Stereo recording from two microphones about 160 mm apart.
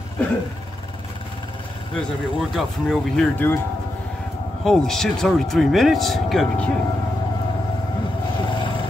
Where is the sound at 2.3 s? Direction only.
Centre (ahead or behind).